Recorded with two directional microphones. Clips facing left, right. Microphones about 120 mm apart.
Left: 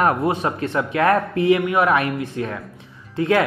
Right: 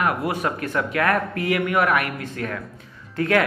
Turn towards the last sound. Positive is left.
turn(degrees=20)  # may be behind; listen again after turning